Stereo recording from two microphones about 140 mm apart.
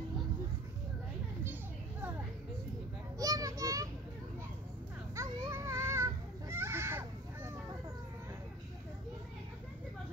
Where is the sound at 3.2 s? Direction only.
25° right (ahead or behind).